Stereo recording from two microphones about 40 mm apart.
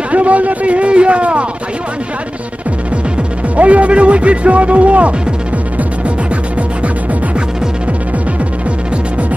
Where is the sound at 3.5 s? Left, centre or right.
Right.